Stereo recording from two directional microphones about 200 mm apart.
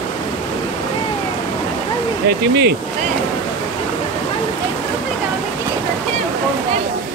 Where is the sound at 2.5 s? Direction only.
55° right (ahead or behind).